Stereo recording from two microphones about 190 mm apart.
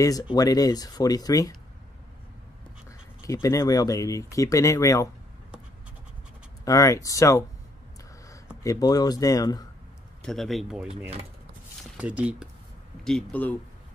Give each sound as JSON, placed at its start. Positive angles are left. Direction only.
{"t": 0.0, "sound": "speech", "side_deg": 20}
{"t": 3.2, "sound": "speech", "side_deg": 15}
{"t": 6.6, "sound": "speech", "side_deg": 20}
{"t": 8.6, "sound": "speech", "side_deg": 20}
{"t": 10.2, "sound": "speech", "side_deg": 0}
{"t": 12.0, "sound": "speech", "side_deg": -5}
{"t": 13.0, "sound": "speech", "side_deg": 5}